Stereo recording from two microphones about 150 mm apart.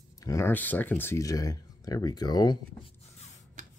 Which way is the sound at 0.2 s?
20° left (ahead or behind).